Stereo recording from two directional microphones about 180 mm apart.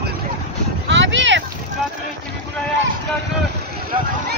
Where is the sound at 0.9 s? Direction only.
85° right.